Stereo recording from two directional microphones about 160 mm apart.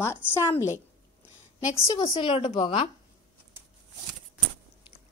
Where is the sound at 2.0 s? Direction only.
35° left (ahead or behind).